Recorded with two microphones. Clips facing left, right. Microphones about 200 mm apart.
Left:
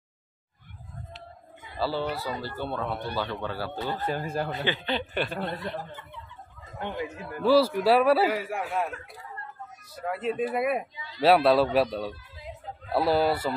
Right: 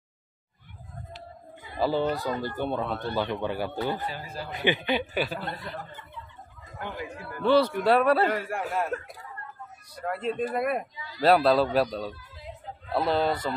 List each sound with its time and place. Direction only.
1.8 s speech: 15° right (ahead or behind)
2.9 s speech: 15° left (ahead or behind)
3.2 s speech: 15° right (ahead or behind)
4.0 s speech: 50° left (ahead or behind)
4.6 s a man's voice: 15° right (ahead or behind)
6.8 s a man's voice: 25° left (ahead or behind)
7.4 s a man's voice: 5° left (ahead or behind)
9.9 s a man's voice: 5° left (ahead or behind)